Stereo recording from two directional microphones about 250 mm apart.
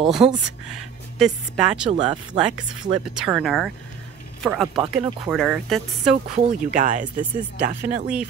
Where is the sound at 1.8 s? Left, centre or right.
Right.